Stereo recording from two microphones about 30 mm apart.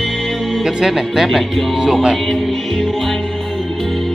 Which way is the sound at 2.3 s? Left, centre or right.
Centre.